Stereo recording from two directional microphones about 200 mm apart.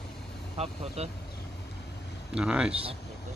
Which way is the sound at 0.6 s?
30° right (ahead or behind).